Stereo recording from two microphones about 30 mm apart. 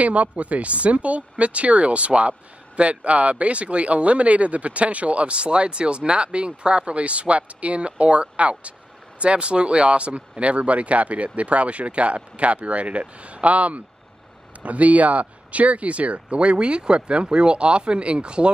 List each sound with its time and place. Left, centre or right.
0.0 s speech: right